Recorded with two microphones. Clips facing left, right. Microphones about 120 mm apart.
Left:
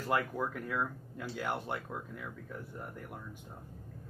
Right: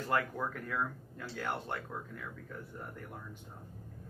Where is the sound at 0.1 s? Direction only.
10° left (ahead or behind).